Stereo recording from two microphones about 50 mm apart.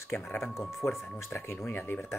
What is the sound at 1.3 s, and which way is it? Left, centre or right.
Speech, left.